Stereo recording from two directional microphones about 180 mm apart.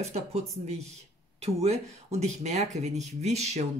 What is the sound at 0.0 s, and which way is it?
Speech, 35° right (ahead or behind).